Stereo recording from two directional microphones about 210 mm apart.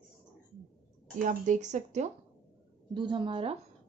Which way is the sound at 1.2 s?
35° right (ahead or behind).